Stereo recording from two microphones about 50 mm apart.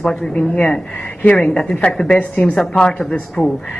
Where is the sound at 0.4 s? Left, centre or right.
Left.